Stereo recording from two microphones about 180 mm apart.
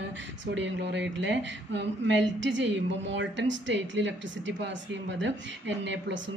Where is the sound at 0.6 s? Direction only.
75° right (ahead or behind).